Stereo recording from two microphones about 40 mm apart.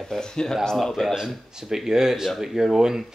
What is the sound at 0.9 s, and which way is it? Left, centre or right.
Speech, centre.